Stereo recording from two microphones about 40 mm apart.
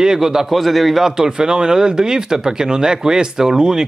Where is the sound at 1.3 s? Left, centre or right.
Centre.